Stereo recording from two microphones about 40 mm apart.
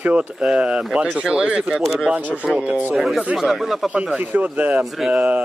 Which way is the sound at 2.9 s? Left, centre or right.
Centre.